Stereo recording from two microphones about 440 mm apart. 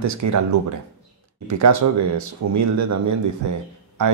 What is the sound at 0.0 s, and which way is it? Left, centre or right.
Speech, right.